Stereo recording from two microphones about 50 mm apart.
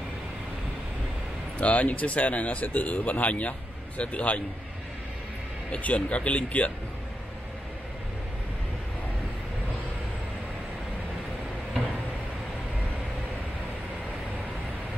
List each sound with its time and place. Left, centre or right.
1.6 s speech: left
5.7 s speech: left